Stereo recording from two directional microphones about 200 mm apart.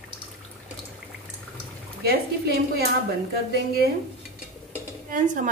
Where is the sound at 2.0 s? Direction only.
50° right (ahead or behind).